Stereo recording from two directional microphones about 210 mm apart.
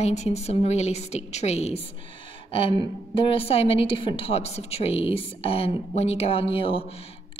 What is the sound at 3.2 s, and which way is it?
A woman's voice, 25° left (ahead or behind).